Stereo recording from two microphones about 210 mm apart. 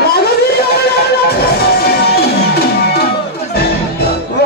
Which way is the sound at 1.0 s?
50° left (ahead or behind).